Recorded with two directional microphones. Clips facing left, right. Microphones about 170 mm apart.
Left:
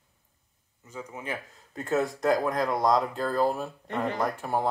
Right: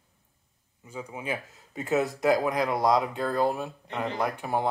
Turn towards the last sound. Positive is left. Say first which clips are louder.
# even
turn(degrees=0)  # may be behind; listen again after turning